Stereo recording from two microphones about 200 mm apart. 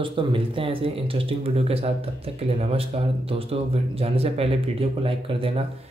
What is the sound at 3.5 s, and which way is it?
Speech, 30° right (ahead or behind).